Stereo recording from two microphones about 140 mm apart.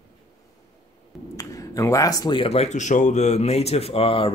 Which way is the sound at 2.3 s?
45° left (ahead or behind).